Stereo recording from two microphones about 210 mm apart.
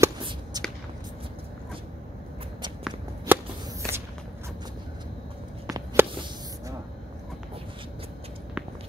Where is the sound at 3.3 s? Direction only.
10° right (ahead or behind).